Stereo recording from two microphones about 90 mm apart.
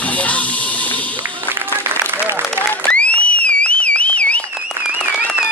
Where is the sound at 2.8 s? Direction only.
15° left (ahead or behind).